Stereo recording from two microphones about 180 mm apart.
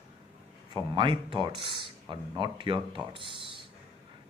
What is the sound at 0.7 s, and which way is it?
A man's voice, 25° right (ahead or behind).